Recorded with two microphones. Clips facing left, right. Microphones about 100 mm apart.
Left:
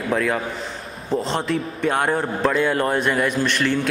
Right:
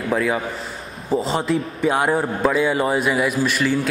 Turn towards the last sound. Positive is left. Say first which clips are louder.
# right 1 dB
turn(degrees=-5)  # may be behind; listen again after turning